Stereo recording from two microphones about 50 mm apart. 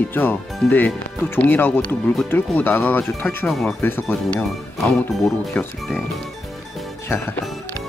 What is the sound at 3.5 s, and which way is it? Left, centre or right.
Speech, centre.